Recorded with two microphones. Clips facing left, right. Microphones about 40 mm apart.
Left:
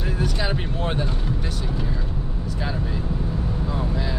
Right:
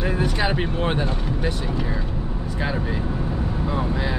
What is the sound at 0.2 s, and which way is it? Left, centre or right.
Speech, right.